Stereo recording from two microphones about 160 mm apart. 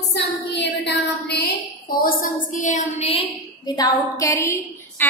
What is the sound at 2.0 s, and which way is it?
A woman's voice, 60° left (ahead or behind).